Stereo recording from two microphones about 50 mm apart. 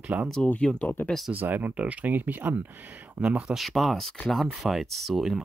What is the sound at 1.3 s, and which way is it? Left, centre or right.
Speech, right.